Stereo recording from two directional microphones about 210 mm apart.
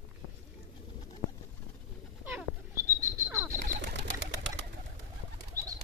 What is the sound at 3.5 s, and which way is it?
Bird, 40° right (ahead or behind).